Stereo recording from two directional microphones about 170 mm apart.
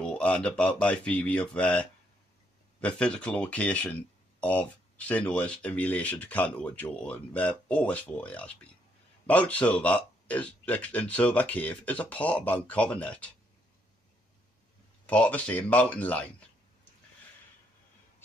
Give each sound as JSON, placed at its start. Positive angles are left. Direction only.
{"t": 0.0, "sound": "speech", "side_deg": 5}
{"t": 15.0, "sound": "speech", "side_deg": 10}